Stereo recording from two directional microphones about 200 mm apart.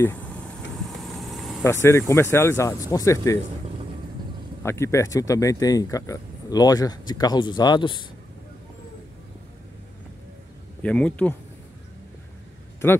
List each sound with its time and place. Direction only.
0.8 s vehicle: centre (ahead or behind)
1.6 s speech: 15° left (ahead or behind)
4.6 s speech: 15° left (ahead or behind)
10.8 s speech: 5° left (ahead or behind)